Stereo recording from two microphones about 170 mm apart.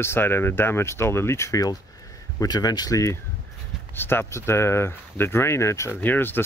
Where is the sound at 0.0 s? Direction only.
15° left (ahead or behind).